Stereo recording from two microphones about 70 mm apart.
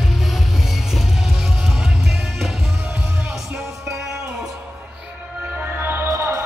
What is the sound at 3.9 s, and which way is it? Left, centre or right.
Music, centre.